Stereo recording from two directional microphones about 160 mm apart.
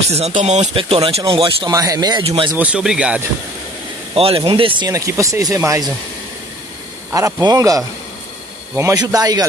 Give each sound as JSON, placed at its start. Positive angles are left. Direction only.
{"t": 0.1, "sound": "speech", "side_deg": -45}
{"t": 0.7, "sound": "speech", "side_deg": -35}
{"t": 2.2, "sound": "speech", "side_deg": -35}
{"t": 2.5, "sound": "speech", "side_deg": -5}
{"t": 4.1, "sound": "speech", "side_deg": -35}
{"t": 7.2, "sound": "speech", "side_deg": -20}